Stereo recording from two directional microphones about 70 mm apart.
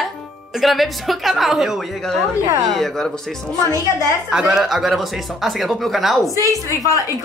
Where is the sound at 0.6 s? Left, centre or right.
Centre.